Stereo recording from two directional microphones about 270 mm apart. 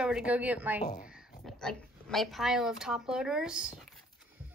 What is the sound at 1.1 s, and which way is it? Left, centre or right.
Speech, centre.